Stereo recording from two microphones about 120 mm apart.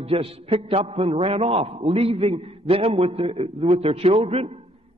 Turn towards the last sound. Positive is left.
turn(degrees=-55)  # may be behind; listen again after turning